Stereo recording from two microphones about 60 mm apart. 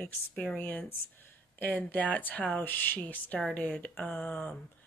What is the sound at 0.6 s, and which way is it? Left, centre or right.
Speech, left.